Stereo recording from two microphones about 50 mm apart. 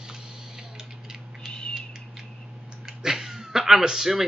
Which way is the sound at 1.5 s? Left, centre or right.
Centre.